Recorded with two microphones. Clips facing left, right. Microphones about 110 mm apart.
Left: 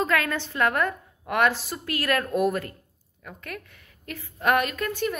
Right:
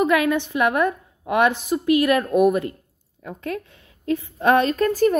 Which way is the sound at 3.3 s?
25° right (ahead or behind).